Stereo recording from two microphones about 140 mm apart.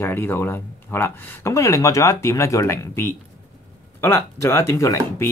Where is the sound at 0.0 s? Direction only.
15° left (ahead or behind).